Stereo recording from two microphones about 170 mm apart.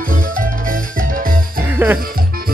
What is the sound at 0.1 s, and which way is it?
Music, 55° right (ahead or behind).